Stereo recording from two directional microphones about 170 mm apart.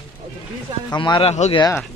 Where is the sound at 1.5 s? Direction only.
25° left (ahead or behind).